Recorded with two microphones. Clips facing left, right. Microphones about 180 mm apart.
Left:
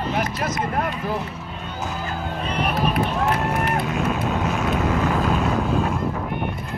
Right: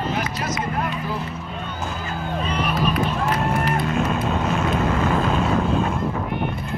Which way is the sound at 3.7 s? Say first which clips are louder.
Right 1 dB; centre (ahead or behind).